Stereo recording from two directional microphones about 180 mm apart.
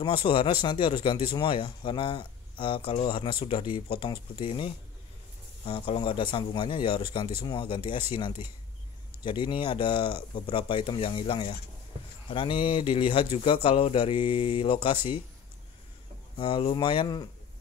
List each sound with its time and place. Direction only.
0.0 s speech: 30° left (ahead or behind)
16.3 s speech: 30° left (ahead or behind)